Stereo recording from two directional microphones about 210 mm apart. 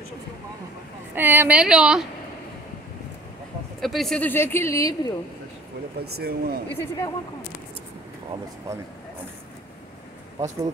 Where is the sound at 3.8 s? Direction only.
Centre (ahead or behind).